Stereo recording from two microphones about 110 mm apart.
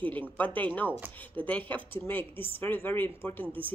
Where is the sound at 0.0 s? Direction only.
15° left (ahead or behind).